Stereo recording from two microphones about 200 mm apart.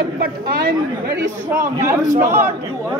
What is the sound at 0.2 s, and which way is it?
Speech, 45° right (ahead or behind).